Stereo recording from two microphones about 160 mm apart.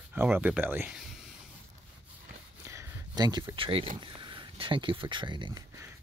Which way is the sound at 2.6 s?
20° right (ahead or behind).